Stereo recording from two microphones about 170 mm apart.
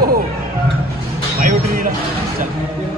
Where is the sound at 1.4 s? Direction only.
55° right (ahead or behind).